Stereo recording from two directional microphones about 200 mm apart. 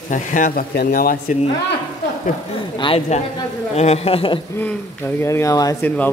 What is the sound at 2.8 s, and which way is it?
Speech, 30° left (ahead or behind).